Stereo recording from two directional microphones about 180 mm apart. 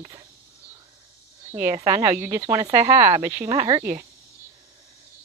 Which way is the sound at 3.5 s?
30° right (ahead or behind).